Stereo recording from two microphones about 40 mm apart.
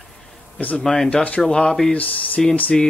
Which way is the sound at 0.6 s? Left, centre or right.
Left.